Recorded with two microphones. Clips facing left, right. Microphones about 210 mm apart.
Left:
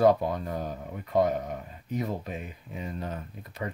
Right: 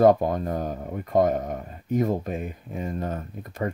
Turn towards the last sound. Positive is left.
turn(degrees=-45)  # may be behind; listen again after turning